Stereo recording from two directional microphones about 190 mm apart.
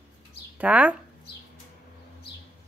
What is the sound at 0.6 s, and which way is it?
Speech, 10° right (ahead or behind).